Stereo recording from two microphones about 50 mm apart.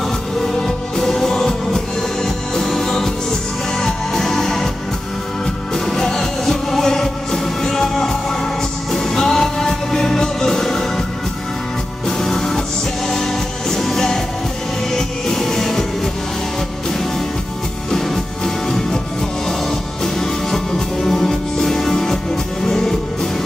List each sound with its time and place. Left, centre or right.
0.4 s music: centre
5.9 s music: centre
12.2 s music: centre
17.9 s music: centre
20.2 s music: centre